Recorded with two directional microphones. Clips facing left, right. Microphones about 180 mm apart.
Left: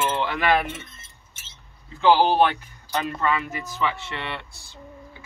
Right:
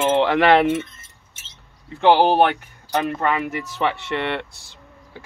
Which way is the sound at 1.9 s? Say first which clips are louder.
Right 3 dB; 60° right (ahead or behind).